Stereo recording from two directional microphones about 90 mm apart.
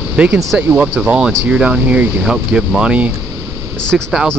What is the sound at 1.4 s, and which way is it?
Speech, 15° right (ahead or behind).